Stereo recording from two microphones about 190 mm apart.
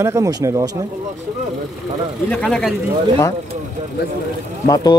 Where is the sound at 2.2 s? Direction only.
5° left (ahead or behind).